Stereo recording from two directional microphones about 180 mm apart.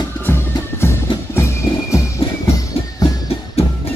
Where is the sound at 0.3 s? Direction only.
15° left (ahead or behind).